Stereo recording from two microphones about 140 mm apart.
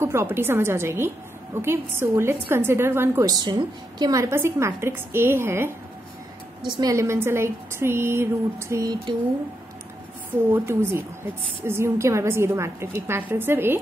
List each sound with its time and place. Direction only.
0.0 s a woman's voice: 20° right (ahead or behind)
10.5 s a woman's voice: 15° right (ahead or behind)